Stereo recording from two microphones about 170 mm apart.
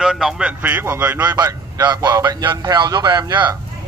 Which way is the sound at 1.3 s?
25° right (ahead or behind).